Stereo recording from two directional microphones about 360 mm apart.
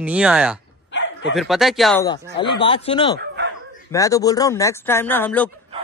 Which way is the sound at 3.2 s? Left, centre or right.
Right.